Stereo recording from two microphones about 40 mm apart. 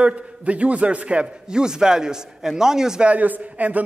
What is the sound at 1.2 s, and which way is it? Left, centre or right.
Speech, centre.